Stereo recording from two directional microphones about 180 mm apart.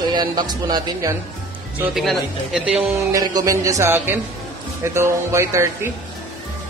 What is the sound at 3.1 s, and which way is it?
Speech, 20° right (ahead or behind).